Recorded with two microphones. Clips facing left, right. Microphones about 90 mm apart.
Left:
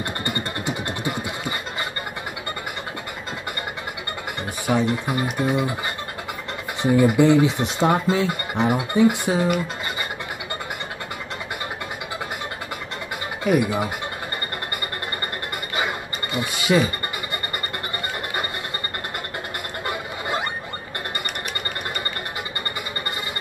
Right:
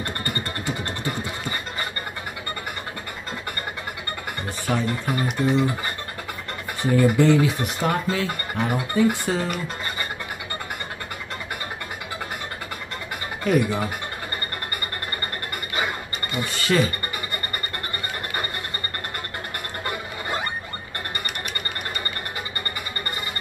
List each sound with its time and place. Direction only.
0.0 s vehicle: 20° left (ahead or behind)
4.6 s speech: 15° left (ahead or behind)
6.8 s speech: 15° left (ahead or behind)
13.4 s speech: 10° left (ahead or behind)
16.3 s speech: 15° left (ahead or behind)